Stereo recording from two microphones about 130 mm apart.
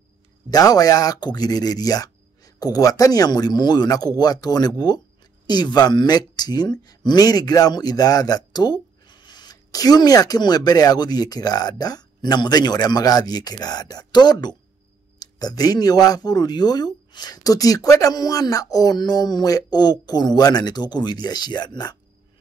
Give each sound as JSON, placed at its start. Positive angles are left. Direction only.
{"t": 0.5, "sound": "speech", "side_deg": 30}